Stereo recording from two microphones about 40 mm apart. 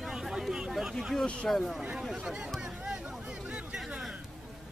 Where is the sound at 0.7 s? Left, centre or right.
Centre.